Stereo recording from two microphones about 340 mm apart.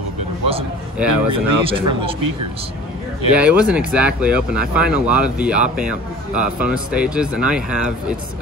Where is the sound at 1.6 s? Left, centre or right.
Centre.